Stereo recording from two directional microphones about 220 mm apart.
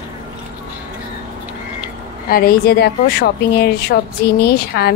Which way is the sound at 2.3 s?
45° left (ahead or behind).